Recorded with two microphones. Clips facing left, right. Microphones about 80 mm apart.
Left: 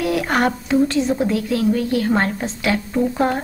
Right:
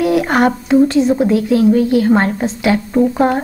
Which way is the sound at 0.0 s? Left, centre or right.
Centre.